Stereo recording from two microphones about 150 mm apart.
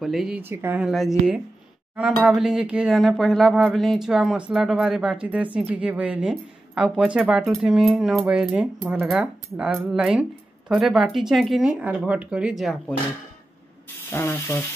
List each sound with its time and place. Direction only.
0.0 s speech: centre (ahead or behind)
0.4 s a woman's voice: 15° right (ahead or behind)
14.1 s speech: 15° left (ahead or behind)